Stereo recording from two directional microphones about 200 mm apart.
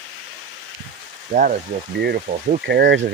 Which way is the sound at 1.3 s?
45° right (ahead or behind).